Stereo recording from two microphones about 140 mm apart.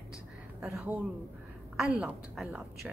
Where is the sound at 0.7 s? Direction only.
10° right (ahead or behind).